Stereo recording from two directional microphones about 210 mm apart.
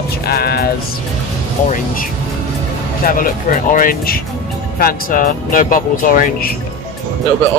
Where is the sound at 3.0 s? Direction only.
45° left (ahead or behind).